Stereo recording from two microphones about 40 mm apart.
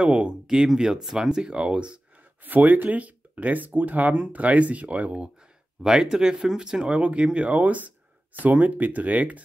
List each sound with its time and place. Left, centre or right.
0.0 s speech: right
0.7 s speech: centre; by 2.0 s right
2.4 s speech: right
5.8 s speech: centre; by 9.4 s right